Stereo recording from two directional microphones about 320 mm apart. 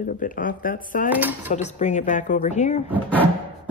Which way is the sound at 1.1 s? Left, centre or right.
Centre.